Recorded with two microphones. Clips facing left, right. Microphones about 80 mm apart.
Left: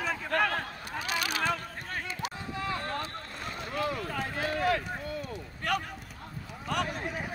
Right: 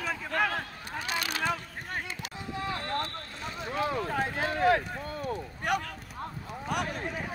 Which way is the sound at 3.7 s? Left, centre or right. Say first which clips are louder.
Right 3 dB; right.